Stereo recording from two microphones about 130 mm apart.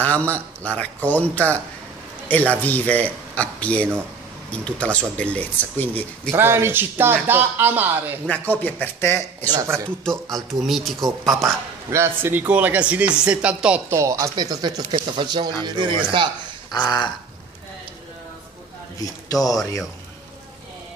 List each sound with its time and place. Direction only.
0.0 s a man's voice: 10° left (ahead or behind)
6.3 s speech: 20° right (ahead or behind)
8.3 s speech: 15° left (ahead or behind)
9.5 s speech: 25° right (ahead or behind)
10.6 s speech: centre (ahead or behind)
11.9 s speech: 20° right (ahead or behind)
13.8 s speech: 25° right (ahead or behind); by 16.3 s 40° right (ahead or behind)
16.7 s a sound: 35° left (ahead or behind)
18.9 s speech: 30° left (ahead or behind)